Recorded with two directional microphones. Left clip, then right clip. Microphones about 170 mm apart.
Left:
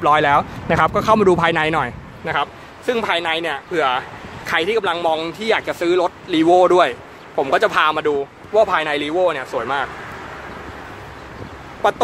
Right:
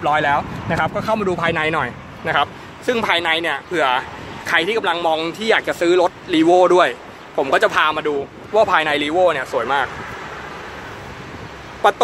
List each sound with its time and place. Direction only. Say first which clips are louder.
0.0 s speech: left 3 dB; 25° left (ahead or behind)
2.2 s speech: right 3 dB; 5° right (ahead or behind)
6.4 s speech: even; 15° left (ahead or behind)
8.5 s speech: right 1 dB; 5° right (ahead or behind)
11.8 s speech: right 2 dB; centre (ahead or behind)